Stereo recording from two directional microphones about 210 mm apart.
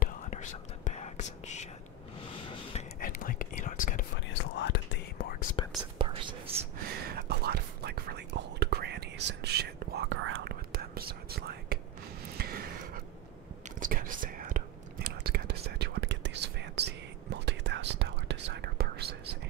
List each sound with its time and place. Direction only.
0.0 s whispering: 35° left (ahead or behind)
2.4 s a sound: 25° left (ahead or behind)
3.0 s whispering: 45° left (ahead or behind)
4.3 s whispering: 55° left (ahead or behind)
5.9 s whispering: 25° right (ahead or behind)
7.1 s whispering: 45° right (ahead or behind)
12.4 s a sound: 45° right (ahead or behind)
13.7 s whispering: 40° right (ahead or behind)
15.8 s whispering: 55° right (ahead or behind)